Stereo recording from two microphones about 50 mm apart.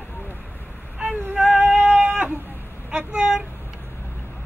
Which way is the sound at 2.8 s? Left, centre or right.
Right.